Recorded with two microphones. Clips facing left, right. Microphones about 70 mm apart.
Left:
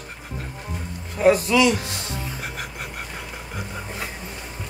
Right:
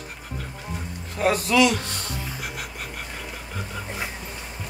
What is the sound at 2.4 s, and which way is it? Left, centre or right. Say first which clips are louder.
Music: left 1 dB; left.